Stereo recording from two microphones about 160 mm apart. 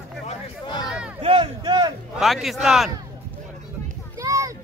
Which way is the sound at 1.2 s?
30° right (ahead or behind).